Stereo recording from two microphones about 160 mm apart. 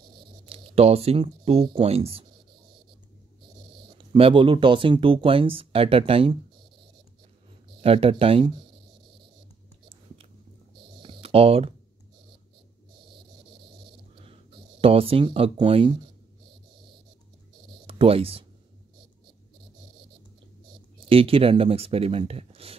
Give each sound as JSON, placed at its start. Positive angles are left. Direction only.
{"t": 0.5, "sound": "speech", "side_deg": -40}
{"t": 4.0, "sound": "speech", "side_deg": -30}
{"t": 7.8, "sound": "speech", "side_deg": -40}
{"t": 11.0, "sound": "typing", "side_deg": -35}
{"t": 14.2, "sound": "speech", "side_deg": -35}
{"t": 17.8, "sound": "speech", "side_deg": -35}
{"t": 21.1, "sound": "speech", "side_deg": -35}